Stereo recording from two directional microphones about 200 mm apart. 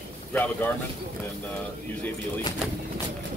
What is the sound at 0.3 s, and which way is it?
Speech, 10° left (ahead or behind).